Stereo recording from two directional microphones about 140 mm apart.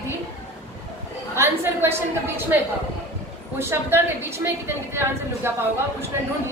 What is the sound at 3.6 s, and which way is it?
A woman's voice, 15° right (ahead or behind).